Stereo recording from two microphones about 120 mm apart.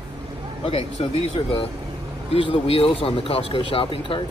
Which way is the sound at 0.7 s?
55° left (ahead or behind).